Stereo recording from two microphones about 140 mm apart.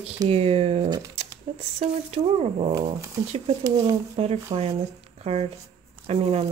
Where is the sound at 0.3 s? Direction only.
45° right (ahead or behind).